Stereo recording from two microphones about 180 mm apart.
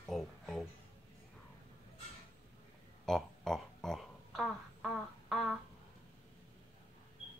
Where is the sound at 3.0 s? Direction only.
Centre (ahead or behind).